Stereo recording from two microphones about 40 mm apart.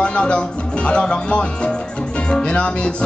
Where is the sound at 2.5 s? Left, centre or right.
Left.